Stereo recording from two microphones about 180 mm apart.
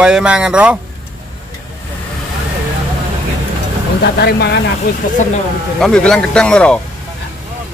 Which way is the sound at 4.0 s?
65° left (ahead or behind).